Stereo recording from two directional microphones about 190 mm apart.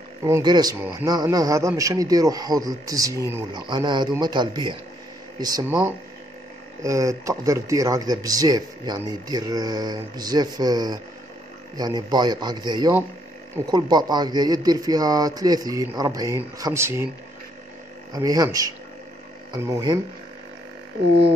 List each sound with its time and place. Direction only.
0.2 s speech: 20° right (ahead or behind)
18.1 s speech: 20° right (ahead or behind)